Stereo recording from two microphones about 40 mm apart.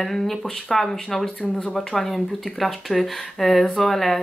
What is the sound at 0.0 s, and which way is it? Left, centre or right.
Speech, centre.